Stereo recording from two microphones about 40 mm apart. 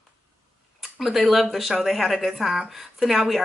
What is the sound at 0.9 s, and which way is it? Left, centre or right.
A woman's voice, centre.